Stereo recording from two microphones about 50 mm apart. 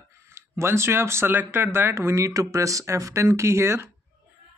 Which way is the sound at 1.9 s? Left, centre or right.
Right.